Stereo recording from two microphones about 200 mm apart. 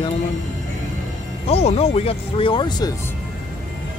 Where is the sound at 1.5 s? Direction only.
30° left (ahead or behind).